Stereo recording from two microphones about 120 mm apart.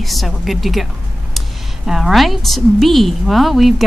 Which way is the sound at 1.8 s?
Centre (ahead or behind).